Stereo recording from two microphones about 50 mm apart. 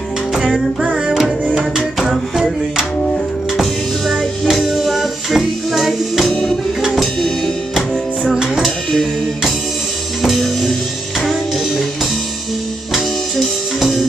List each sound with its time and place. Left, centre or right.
2.0 s music: centre
4.1 s music: centre
6.3 s music: centre
6.8 s music: centre
10.2 s music: centre